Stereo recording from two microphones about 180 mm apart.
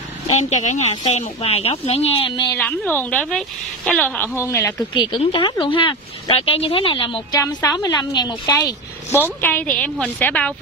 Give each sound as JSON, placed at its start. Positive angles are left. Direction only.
{"t": 0.4, "sound": "speech", "side_deg": 40}
{"t": 2.5, "sound": "a woman's voice", "side_deg": 5}
{"t": 4.9, "sound": "a woman's voice", "side_deg": 25}